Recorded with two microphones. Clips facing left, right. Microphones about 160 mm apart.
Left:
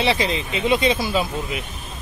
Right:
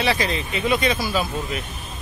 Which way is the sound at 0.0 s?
25° left (ahead or behind).